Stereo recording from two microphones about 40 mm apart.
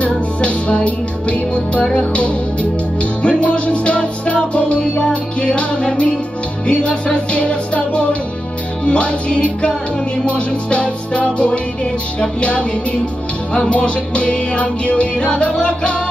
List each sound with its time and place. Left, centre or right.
0.0 s music: left
13.7 s music: left